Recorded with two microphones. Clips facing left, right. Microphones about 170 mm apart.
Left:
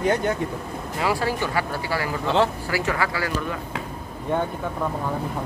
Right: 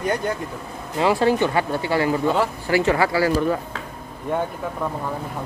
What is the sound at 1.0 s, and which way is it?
Speech, 25° right (ahead or behind).